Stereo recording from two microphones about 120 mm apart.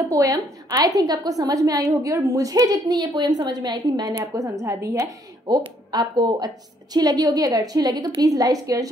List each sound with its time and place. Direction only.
0.1 s a woman's voice: 30° right (ahead or behind)